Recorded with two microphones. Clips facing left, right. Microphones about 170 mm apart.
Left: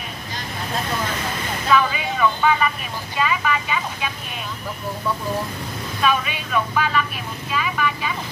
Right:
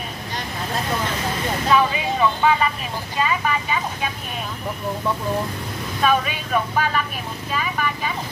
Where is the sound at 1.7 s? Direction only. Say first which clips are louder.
Even; 25° right (ahead or behind).